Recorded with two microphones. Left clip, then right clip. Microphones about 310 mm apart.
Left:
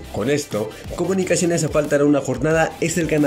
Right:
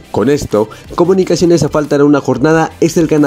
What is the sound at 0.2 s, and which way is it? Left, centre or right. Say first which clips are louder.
Speech: right 10 dB; right.